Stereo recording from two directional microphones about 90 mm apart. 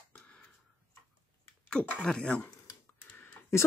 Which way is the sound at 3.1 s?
20° left (ahead or behind).